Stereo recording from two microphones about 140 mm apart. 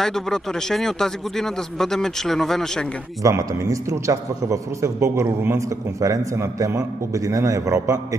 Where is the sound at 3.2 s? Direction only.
20° right (ahead or behind).